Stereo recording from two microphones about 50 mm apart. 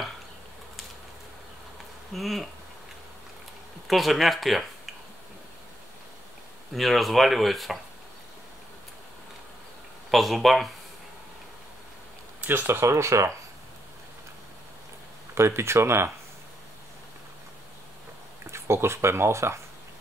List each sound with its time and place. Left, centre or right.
2.1 s speech: centre
3.8 s speech: centre
6.7 s speech: centre
10.1 s speech: centre
12.4 s a sound: right
12.8 s speech: right
15.3 s speech: right
18.5 s speech: right